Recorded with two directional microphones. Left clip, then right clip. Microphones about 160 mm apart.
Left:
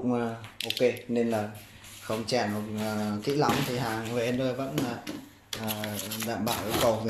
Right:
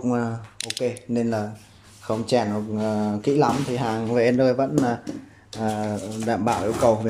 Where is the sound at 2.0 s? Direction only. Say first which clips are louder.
Right 6 dB; 15° right (ahead or behind).